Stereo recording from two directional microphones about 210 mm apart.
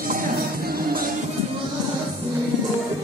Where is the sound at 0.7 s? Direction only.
45° right (ahead or behind).